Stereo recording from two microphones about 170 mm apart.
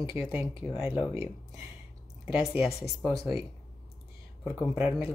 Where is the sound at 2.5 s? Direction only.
15° right (ahead or behind).